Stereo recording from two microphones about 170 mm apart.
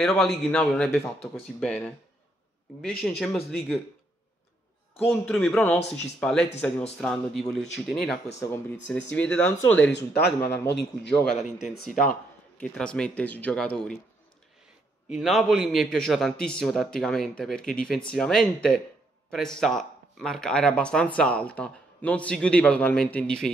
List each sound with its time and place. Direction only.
0.0 s a man's voice: 5° left (ahead or behind)
3.0 s a man's voice: centre (ahead or behind)
4.9 s a man's voice: 5° left (ahead or behind)
9.9 s speech: 70° left (ahead or behind)
10.4 s a man's voice: 10° left (ahead or behind)
11.5 s a man's voice: centre (ahead or behind)
15.1 s a man's voice: centre (ahead or behind)